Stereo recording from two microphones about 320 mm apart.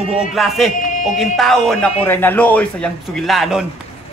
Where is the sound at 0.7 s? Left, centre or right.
Left.